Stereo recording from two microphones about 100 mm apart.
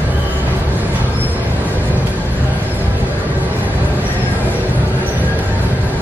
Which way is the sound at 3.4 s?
20° right (ahead or behind).